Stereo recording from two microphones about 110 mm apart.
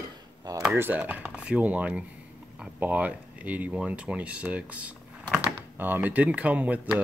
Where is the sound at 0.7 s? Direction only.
15° right (ahead or behind).